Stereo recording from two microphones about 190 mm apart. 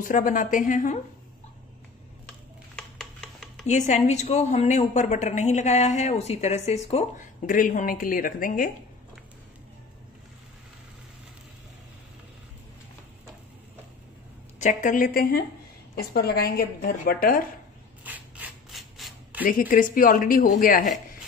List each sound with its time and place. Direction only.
0.0 s a woman's voice: 45° left (ahead or behind)
2.2 s a sound: 5° left (ahead or behind)
3.6 s a woman's voice: 40° left (ahead or behind)
14.6 s a woman's voice: 40° left (ahead or behind)
18.0 s a sound: 10° right (ahead or behind)
19.4 s a woman's voice: 45° left (ahead or behind)